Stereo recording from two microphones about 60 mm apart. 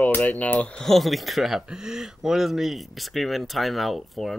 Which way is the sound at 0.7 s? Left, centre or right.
Centre.